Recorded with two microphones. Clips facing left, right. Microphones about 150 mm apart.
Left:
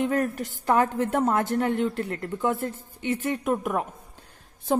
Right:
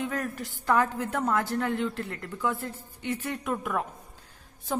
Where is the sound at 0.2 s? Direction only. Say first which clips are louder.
Left 7 dB; 25° left (ahead or behind).